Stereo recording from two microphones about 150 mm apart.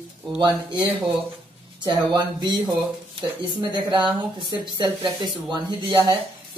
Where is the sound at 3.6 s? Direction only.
30° right (ahead or behind).